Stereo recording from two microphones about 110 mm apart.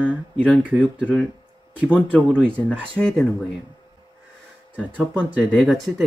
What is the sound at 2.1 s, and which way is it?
Speech, 10° right (ahead or behind).